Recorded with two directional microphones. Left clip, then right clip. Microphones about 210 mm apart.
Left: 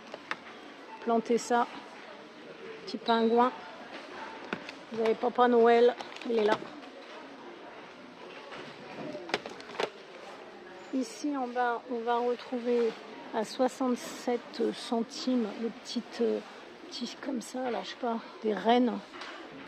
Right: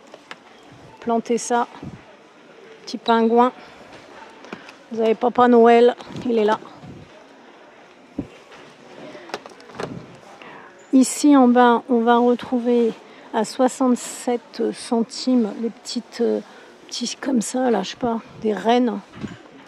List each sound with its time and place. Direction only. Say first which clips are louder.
1.0 s a woman's voice: right 7 dB; 20° right (ahead or behind)
2.9 s a woman's voice: right 9 dB; 25° right (ahead or behind)
5.0 s a woman's voice: right 9 dB; 30° right (ahead or behind)
11.0 s a woman's voice: right 19 dB; 40° right (ahead or behind); by 18.9 s 20° right (ahead or behind)